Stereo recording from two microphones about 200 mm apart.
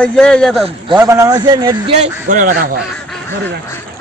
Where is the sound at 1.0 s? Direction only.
15° right (ahead or behind).